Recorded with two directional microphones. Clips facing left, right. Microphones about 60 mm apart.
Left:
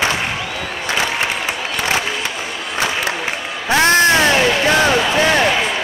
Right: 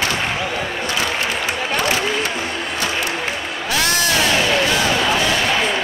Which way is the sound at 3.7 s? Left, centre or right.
Left.